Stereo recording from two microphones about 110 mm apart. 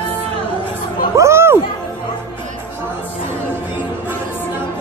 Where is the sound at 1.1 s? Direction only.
25° right (ahead or behind).